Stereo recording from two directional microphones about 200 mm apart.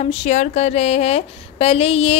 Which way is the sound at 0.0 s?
35° left (ahead or behind).